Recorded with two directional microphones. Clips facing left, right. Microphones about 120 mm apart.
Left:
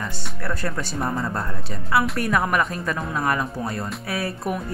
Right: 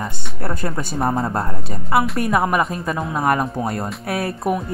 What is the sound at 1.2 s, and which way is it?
Speech, 30° right (ahead or behind).